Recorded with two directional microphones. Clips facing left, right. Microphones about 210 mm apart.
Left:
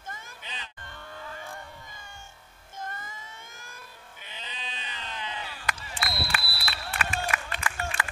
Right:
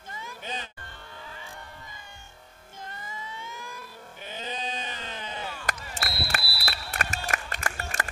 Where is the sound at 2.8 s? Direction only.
50° left (ahead or behind).